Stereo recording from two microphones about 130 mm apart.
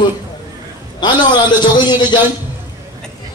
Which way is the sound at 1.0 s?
35° left (ahead or behind).